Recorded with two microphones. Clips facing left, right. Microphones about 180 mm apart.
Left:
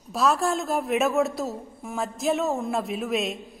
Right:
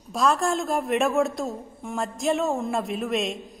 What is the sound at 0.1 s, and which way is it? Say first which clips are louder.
A woman's voice: even; 5° left (ahead or behind).